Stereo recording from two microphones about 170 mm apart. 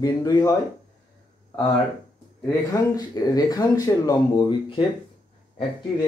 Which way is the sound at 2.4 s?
20° left (ahead or behind).